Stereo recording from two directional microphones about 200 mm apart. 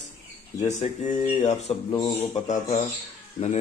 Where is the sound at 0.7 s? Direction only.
35° left (ahead or behind).